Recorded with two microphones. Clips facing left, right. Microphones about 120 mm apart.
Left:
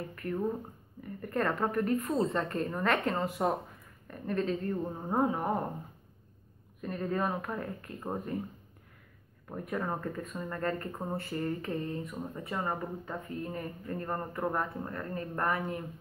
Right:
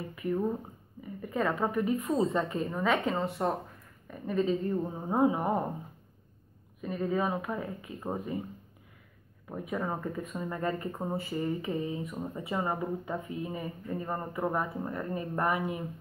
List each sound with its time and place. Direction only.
0.1 s a woman's voice: 5° right (ahead or behind)
6.8 s a woman's voice: 5° right (ahead or behind)
9.5 s a woman's voice: 5° right (ahead or behind)